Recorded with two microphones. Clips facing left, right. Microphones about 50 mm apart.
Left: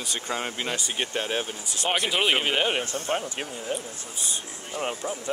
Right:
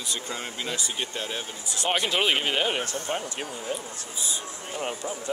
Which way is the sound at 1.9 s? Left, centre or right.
Centre.